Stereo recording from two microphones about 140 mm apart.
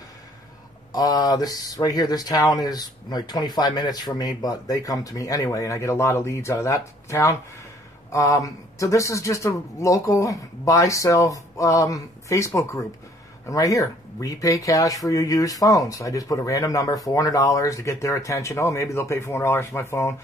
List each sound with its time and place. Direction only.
0.9 s speech: 25° left (ahead or behind)